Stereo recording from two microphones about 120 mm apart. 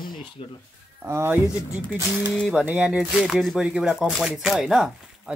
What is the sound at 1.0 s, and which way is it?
Speech, 20° right (ahead or behind).